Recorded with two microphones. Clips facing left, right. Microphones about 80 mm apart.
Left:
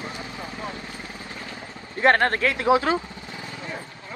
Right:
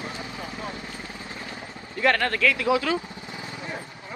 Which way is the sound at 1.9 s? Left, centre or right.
Left.